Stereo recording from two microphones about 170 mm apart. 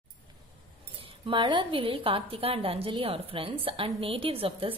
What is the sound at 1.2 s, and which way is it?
A woman's voice, 30° right (ahead or behind).